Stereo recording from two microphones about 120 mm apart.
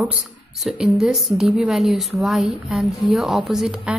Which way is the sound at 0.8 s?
5° right (ahead or behind).